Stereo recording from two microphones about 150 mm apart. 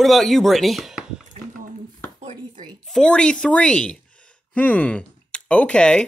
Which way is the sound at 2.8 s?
5° left (ahead or behind).